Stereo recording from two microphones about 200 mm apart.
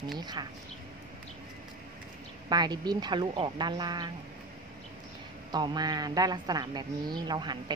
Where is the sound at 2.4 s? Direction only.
20° right (ahead or behind).